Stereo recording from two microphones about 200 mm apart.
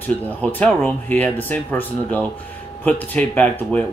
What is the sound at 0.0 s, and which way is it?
Speech, 10° left (ahead or behind).